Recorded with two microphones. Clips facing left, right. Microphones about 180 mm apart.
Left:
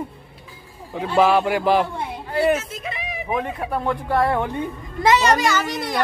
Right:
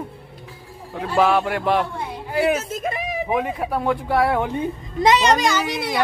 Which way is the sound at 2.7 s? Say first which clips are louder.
Right 5 dB; 45° right (ahead or behind).